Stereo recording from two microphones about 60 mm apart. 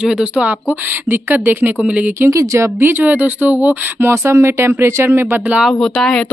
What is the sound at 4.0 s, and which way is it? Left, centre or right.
Speech, right.